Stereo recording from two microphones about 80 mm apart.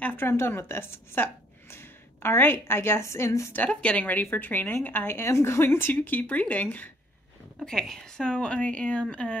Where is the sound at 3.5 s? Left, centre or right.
Centre.